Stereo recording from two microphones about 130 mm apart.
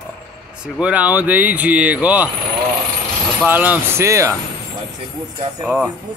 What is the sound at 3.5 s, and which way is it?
Speech, 15° right (ahead or behind).